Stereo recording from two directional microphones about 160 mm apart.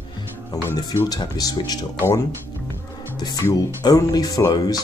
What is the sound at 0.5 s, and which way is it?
Speech, 20° left (ahead or behind).